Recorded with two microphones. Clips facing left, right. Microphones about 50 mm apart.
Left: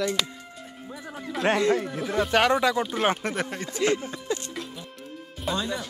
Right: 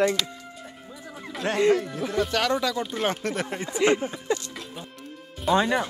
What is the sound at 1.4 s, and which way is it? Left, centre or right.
Speech, left.